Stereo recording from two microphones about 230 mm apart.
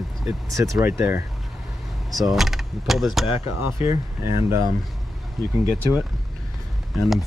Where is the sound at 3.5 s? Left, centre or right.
Centre.